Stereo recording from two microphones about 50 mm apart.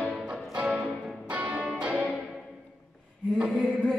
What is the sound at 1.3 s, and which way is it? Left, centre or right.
Music, right.